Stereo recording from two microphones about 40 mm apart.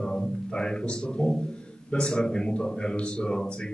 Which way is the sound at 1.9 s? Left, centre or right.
Left.